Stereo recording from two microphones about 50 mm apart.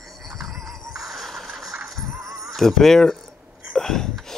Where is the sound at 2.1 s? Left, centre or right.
Right.